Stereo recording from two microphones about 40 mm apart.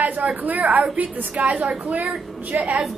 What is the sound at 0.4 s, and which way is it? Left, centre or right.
A woman's voice, right.